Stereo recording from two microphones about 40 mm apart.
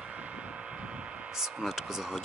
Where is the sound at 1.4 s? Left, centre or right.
Centre.